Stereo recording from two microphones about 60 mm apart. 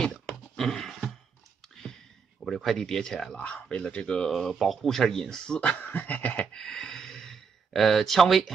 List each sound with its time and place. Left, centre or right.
0.1 s a sound: centre
2.4 s speech: centre
3.3 s speech: left
4.4 s speech: centre
5.6 s a sound: left
6.5 s speech: centre